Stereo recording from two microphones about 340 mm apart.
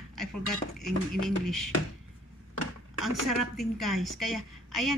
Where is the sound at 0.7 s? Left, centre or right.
Centre.